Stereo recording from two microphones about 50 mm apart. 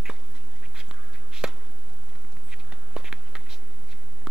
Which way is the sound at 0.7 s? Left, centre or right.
Centre.